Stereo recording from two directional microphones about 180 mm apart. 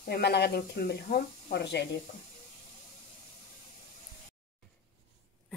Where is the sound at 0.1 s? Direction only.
65° left (ahead or behind).